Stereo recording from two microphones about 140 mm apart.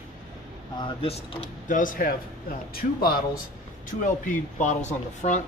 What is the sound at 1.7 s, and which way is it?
A man's voice, 75° left (ahead or behind).